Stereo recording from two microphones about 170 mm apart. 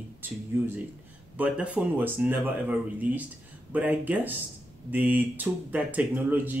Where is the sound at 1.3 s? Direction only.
10° right (ahead or behind).